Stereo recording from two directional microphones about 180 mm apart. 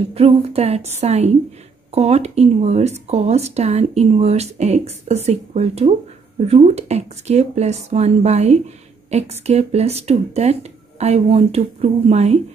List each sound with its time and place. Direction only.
0.1 s speech: 35° right (ahead or behind)